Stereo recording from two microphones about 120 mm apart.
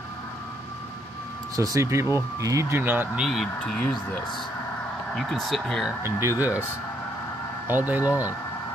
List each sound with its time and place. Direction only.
1.6 s speech: 25° right (ahead or behind)
3.2 s speech: centre (ahead or behind)
3.5 s speech: 10° left (ahead or behind)
6.0 s speech: 20° right (ahead or behind)
7.6 s speech: 15° right (ahead or behind)